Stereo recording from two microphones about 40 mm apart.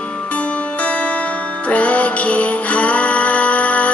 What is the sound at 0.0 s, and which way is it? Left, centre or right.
Music, left.